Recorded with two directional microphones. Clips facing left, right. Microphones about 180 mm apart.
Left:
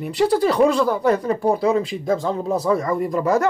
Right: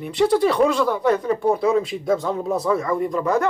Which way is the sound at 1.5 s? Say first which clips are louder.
Even; centre (ahead or behind).